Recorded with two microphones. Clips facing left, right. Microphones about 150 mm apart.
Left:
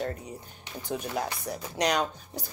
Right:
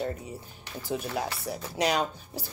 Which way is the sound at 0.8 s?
5° right (ahead or behind).